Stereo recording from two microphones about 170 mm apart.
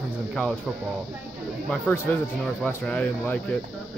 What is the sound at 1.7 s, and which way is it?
Speech, 10° left (ahead or behind).